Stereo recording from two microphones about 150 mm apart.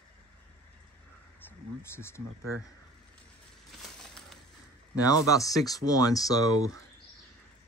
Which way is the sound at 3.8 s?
Centre (ahead or behind).